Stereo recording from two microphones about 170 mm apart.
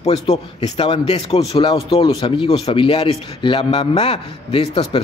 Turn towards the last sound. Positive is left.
turn(degrees=35)  # may be behind; listen again after turning